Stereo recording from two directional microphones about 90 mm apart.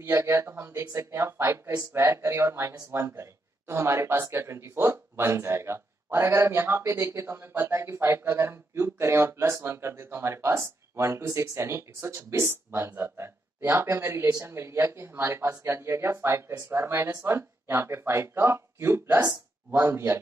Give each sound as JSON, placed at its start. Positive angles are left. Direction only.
{"t": 0.0, "sound": "speech", "side_deg": -30}